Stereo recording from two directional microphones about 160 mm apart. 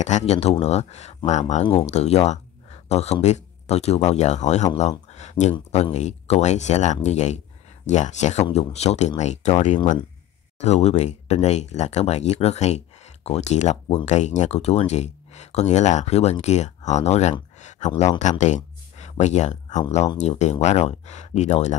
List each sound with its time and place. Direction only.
0.0 s speech: 45° left (ahead or behind)
18.4 s a sound: 45° left (ahead or behind)
20.2 s speech: 45° left (ahead or behind)